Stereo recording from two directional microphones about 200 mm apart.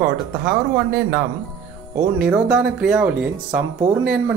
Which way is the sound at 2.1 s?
5° right (ahead or behind).